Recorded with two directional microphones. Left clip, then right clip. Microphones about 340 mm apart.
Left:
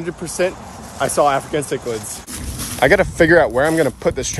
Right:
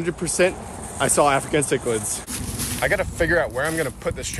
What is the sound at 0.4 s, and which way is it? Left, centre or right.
Speech, centre.